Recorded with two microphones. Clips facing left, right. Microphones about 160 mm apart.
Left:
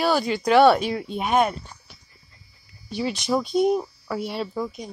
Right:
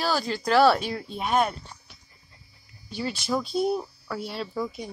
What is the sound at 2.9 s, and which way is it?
Speech, centre (ahead or behind).